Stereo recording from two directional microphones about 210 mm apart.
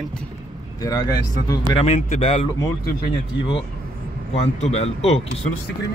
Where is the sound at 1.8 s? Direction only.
30° left (ahead or behind).